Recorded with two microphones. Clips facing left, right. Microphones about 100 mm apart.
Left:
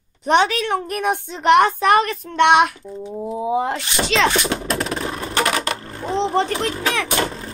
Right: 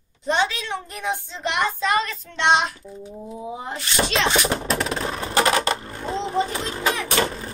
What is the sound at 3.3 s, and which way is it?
Speech, 75° left (ahead or behind).